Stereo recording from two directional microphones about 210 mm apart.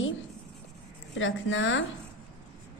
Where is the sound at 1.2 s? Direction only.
65° left (ahead or behind).